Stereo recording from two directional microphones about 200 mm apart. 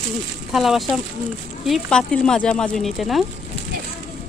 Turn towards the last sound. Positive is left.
turn(degrees=0)  # may be behind; listen again after turning